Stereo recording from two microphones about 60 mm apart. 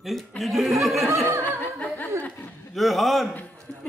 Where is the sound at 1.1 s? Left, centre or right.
Right.